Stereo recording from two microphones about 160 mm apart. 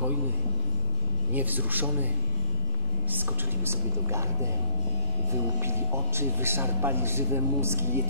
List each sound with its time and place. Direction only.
1.3 s a man's voice: 10° right (ahead or behind)
3.1 s a man's voice: 15° right (ahead or behind)